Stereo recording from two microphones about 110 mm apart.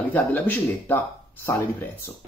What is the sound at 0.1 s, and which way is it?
Speech, 15° left (ahead or behind).